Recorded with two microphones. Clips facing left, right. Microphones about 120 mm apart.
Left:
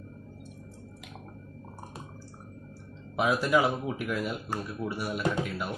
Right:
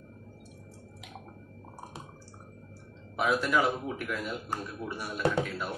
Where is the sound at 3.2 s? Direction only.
15° left (ahead or behind).